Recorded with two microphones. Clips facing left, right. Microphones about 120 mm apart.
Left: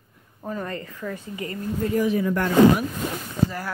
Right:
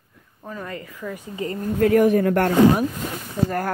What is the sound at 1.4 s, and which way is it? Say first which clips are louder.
Speech: right 4 dB; 30° right (ahead or behind).